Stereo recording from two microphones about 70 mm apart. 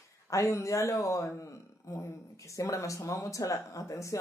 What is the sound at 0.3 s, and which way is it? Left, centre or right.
Speech, left.